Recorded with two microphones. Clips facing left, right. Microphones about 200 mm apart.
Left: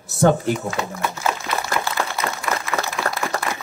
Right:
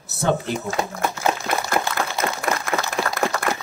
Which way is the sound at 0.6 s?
45° right (ahead or behind).